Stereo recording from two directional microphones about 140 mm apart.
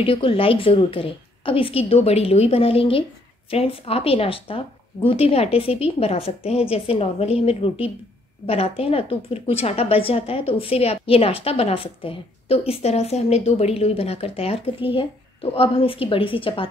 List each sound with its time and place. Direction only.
0.0 s a woman's voice: 40° left (ahead or behind)